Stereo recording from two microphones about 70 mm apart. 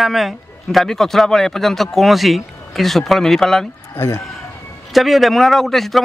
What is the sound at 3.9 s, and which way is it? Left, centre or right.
Speech, left.